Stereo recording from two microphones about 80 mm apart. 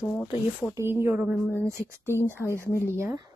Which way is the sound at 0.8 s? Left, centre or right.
Right.